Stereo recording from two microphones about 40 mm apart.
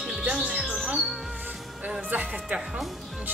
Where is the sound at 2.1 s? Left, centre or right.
Right.